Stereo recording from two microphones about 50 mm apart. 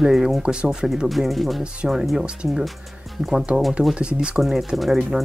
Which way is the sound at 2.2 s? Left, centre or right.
Centre.